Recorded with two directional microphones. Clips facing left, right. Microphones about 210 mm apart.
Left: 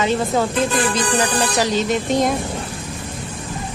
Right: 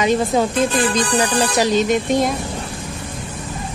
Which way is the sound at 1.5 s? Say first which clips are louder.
Right 3 dB; 15° right (ahead or behind).